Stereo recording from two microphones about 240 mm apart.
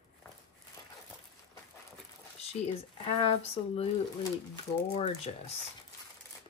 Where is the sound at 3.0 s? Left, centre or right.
Left.